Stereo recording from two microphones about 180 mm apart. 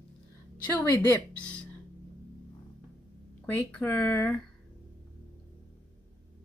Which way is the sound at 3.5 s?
10° left (ahead or behind).